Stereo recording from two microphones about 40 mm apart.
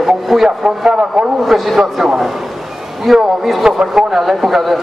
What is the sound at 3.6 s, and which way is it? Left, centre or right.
A man's voice, centre.